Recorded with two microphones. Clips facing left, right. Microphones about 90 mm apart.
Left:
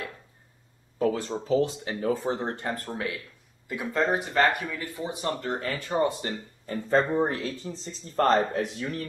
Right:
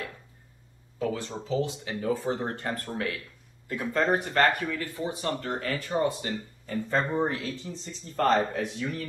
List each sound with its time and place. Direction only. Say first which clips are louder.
1.1 s speech: left 4 dB; 40° left (ahead or behind)
2.2 s speech: left 1 dB; 20° left (ahead or behind)
3.6 s speech: even; 15° left (ahead or behind)
4.6 s speech: right 2 dB; 15° left (ahead or behind); by 9.0 s 40° left (ahead or behind)